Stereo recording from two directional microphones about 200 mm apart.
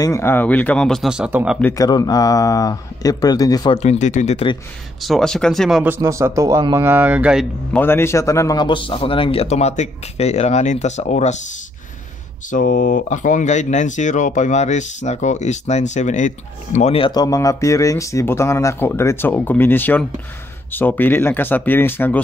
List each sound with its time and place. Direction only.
0.0 s speech: 15° left (ahead or behind); by 1.6 s 5° right (ahead or behind)
1.6 s a man's voice: 15° left (ahead or behind)
3.7 s speech: 35° left (ahead or behind)
5.0 s speech: centre (ahead or behind)
5.9 s a man's voice: 15° right (ahead or behind)
7.7 s a man's voice: 10° left (ahead or behind); by 11.3 s 35° left (ahead or behind)
12.4 s speech: 40° left (ahead or behind); by 22.2 s 10° left (ahead or behind)